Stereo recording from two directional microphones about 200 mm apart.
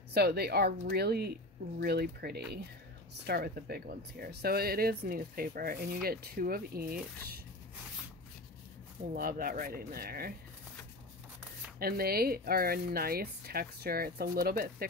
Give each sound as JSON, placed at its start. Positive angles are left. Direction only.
{"t": 0.1, "sound": "speech", "side_deg": -55}
{"t": 9.1, "sound": "speech", "side_deg": -45}
{"t": 11.8, "sound": "speech", "side_deg": -50}